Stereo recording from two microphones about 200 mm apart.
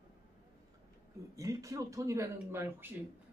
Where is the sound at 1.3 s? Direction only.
15° right (ahead or behind).